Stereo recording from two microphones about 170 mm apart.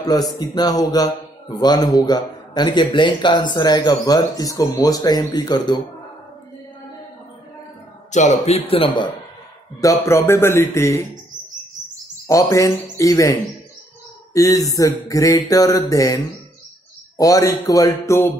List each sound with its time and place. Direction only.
0.0 s a man's voice: 20° left (ahead or behind)
8.1 s speech: 40° left (ahead or behind)
9.8 s speech: 15° left (ahead or behind)
12.3 s a man's voice: 20° left (ahead or behind)
17.2 s a man's voice: 20° left (ahead or behind)